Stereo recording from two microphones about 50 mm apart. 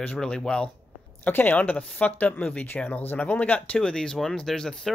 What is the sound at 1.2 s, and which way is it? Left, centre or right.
Speech, left.